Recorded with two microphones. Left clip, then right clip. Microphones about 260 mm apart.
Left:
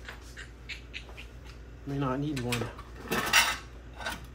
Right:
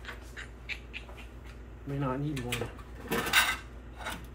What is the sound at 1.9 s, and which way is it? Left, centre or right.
Speech, centre.